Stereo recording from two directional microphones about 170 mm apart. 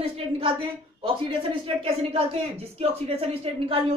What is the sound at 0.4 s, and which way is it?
A woman's voice, 30° right (ahead or behind).